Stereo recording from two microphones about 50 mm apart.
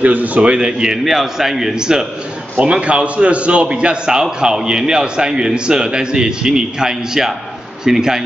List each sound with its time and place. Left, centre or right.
0.0 s a man's voice: right
1.0 s a man's voice: centre
2.6 s a man's voice: right